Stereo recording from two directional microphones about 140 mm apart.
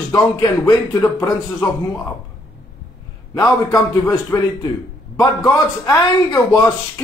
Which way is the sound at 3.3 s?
25° left (ahead or behind).